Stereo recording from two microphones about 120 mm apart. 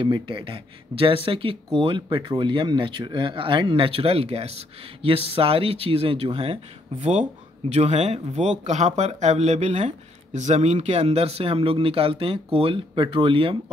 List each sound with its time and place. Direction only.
0.0 s speech: 45° right (ahead or behind)
7.0 s speech: 75° right (ahead or behind); by 13.6 s 45° right (ahead or behind)